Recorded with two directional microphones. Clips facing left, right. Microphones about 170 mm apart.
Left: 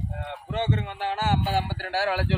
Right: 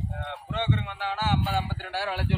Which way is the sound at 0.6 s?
45° left (ahead or behind).